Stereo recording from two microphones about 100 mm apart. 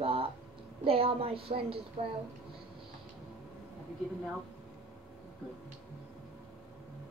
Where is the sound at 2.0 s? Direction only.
90° right.